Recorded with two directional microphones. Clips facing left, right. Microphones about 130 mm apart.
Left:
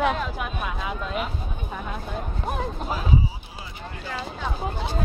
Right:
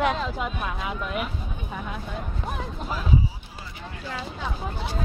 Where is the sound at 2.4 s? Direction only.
30° left (ahead or behind).